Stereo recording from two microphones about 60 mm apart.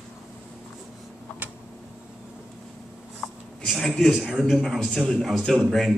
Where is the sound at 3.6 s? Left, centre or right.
Centre.